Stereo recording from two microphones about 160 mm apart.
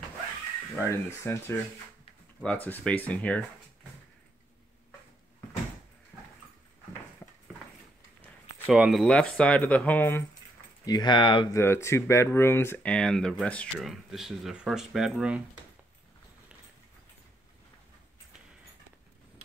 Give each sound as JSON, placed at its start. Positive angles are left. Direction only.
{"t": 0.8, "sound": "speech", "side_deg": 15}
{"t": 7.2, "sound": "dog", "side_deg": 15}
{"t": 8.6, "sound": "speech", "side_deg": 0}
{"t": 10.9, "sound": "speech", "side_deg": 25}
{"t": 11.5, "sound": "speech", "side_deg": 15}